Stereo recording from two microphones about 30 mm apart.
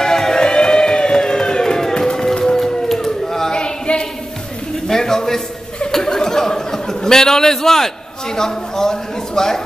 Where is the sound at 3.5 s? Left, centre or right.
Left.